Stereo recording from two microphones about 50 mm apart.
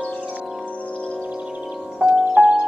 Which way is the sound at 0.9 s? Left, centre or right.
Left.